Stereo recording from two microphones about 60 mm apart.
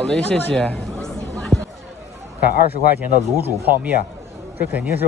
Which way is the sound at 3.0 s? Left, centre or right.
Right.